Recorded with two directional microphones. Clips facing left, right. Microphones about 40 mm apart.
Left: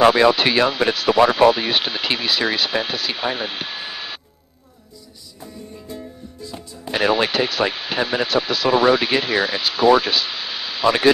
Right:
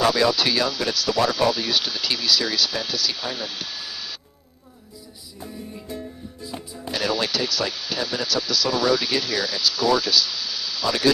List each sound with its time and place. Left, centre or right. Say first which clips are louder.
0.0 s speech: left 6 dB; left
6.9 s speech: left 6 dB; left